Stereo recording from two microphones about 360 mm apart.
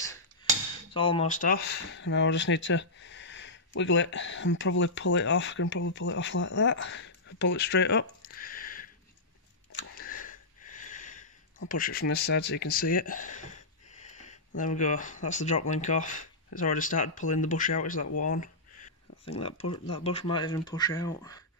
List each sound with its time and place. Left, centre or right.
0.9 s speech: centre
9.9 s sniff: left
11.7 s speech: left
18.4 s a sound: centre
20.0 s speech: centre